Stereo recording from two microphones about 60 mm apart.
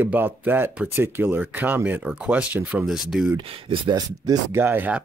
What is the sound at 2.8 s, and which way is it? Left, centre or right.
Speech, centre.